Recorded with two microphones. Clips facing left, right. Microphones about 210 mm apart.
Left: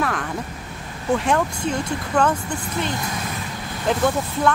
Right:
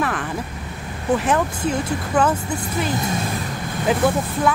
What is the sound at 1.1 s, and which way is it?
Speech, 5° right (ahead or behind).